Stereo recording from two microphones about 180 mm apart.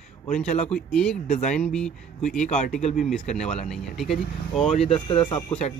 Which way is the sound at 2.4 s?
45° left (ahead or behind).